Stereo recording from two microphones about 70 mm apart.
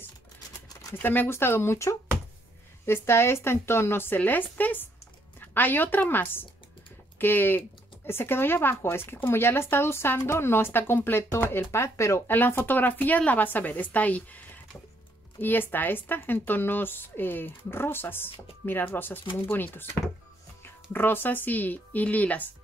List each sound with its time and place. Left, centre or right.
0.9 s speech: left